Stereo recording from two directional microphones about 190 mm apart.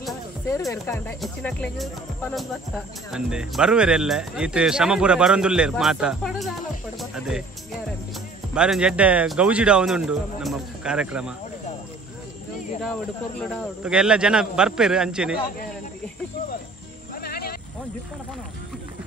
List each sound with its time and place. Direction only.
0.5 s speech: 15° left (ahead or behind); by 7.4 s 5° right (ahead or behind)
8.5 s speech: 5° right (ahead or behind)
13.4 s speech: 5° right (ahead or behind)
17.2 s a sound: 55° left (ahead or behind)